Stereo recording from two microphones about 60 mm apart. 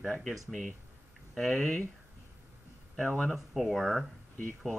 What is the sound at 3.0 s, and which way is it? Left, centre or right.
Speech, centre.